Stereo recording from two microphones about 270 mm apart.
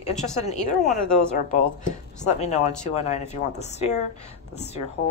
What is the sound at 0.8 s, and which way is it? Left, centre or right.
Speech, centre.